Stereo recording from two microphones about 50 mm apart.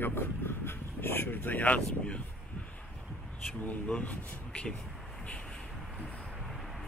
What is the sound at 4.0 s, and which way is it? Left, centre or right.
Speech, left.